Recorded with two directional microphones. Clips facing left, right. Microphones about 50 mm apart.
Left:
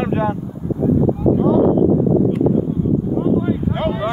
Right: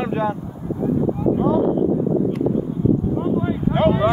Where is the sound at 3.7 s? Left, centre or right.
Right.